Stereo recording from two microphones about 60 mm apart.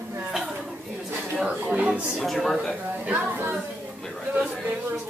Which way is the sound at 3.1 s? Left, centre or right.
Right.